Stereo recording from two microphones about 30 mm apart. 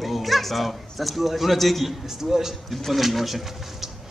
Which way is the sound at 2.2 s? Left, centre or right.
Centre.